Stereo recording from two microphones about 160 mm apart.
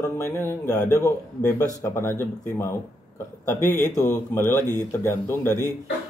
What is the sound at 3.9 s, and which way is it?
Speech, 15° left (ahead or behind).